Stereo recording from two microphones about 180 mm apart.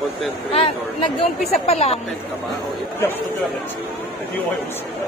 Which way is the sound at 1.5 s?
35° left (ahead or behind).